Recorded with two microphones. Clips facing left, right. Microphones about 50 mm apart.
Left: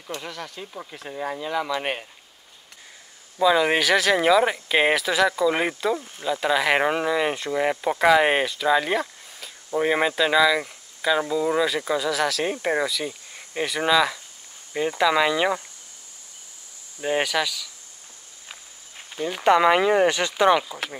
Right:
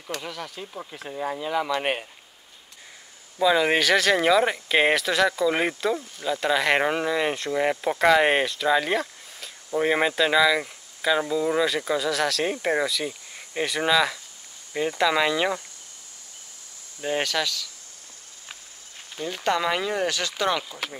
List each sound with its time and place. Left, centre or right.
0.2 s speech: centre
3.3 s speech: centre
17.0 s speech: centre
19.1 s speech: centre